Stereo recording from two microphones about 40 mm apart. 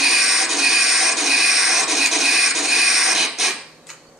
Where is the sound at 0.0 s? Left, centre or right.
Centre.